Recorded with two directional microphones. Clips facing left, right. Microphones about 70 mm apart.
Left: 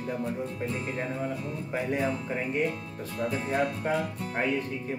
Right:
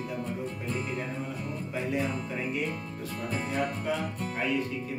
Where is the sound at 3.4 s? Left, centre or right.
Left.